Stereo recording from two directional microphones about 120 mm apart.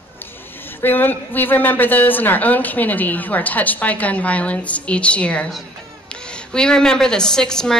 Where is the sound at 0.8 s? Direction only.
15° left (ahead or behind).